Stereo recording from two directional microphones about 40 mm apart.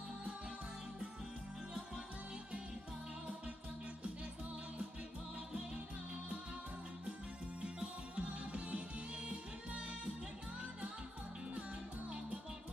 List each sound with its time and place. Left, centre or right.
7.6 s music: right